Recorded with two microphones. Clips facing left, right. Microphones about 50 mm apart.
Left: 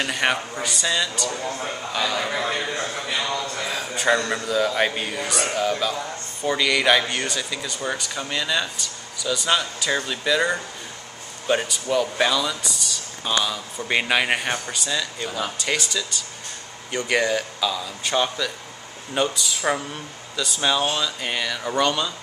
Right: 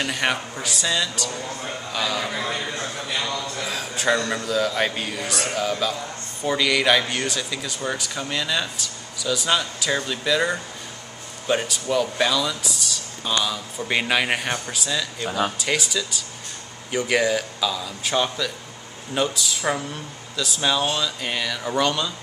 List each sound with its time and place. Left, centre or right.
0.0 s speech: centre
2.4 s a man's voice: centre
3.6 s a man's voice: centre
15.2 s speech: right
15.6 s speech: centre